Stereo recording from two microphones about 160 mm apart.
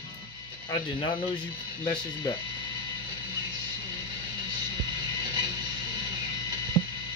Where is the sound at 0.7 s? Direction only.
30° left (ahead or behind).